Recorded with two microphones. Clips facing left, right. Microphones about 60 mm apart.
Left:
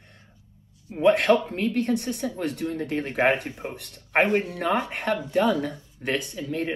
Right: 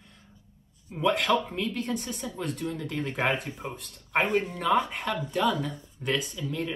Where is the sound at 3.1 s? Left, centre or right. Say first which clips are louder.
Left 6 dB; left.